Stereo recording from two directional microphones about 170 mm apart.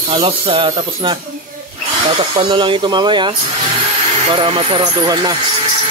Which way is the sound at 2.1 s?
30° right (ahead or behind).